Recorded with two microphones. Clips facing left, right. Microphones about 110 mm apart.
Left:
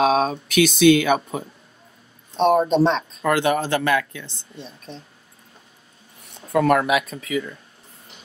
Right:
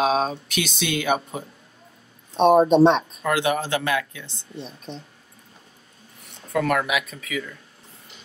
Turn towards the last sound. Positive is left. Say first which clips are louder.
# left 5 dB
turn(degrees=35)  # may be behind; listen again after turning